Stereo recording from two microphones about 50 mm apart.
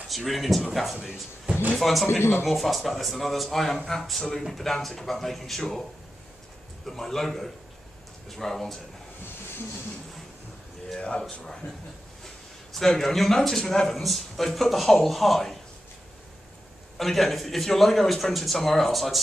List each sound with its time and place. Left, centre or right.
0.2 s speech: centre
2.0 s speech: left
2.4 s speech: centre
6.9 s a man's voice: centre
11.0 s speech: centre
12.7 s speech: centre
16.9 s speech: centre